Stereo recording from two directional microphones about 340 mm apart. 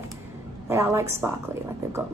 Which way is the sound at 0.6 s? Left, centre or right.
Centre.